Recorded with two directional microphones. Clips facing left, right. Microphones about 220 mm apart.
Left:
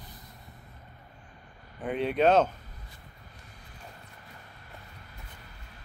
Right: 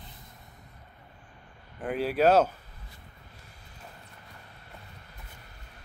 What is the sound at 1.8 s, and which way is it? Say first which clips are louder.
Speech: even; centre (ahead or behind).